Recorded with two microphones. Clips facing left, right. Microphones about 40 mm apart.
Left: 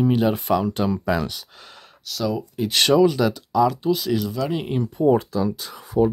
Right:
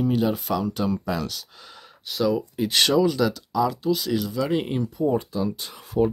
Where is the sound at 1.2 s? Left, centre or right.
Centre.